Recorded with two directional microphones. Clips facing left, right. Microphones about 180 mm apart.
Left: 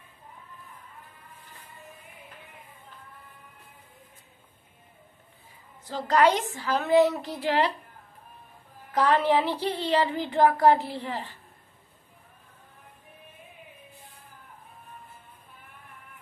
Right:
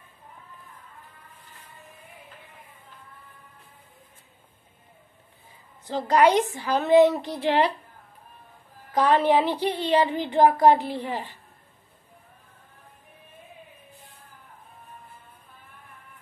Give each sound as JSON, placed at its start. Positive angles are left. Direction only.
{"t": 5.9, "sound": "a woman's voice", "side_deg": -20}
{"t": 8.9, "sound": "speech", "side_deg": -20}